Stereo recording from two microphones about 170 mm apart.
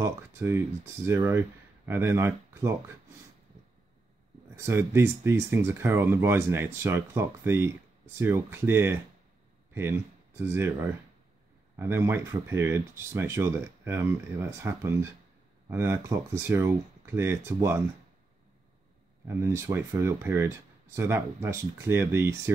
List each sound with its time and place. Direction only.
0.0 s speech: 15° right (ahead or behind)
4.6 s speech: 15° right (ahead or behind)
19.2 s speech: 15° right (ahead or behind)